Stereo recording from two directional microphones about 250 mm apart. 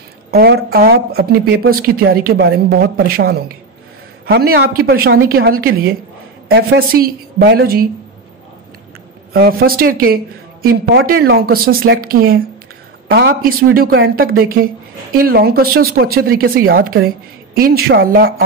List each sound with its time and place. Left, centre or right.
0.3 s a woman's voice: right
9.3 s a woman's voice: right